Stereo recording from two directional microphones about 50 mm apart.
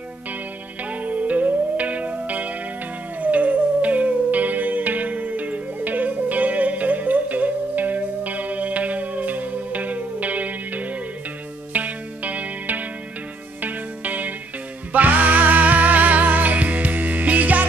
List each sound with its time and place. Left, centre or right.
1.0 s music: right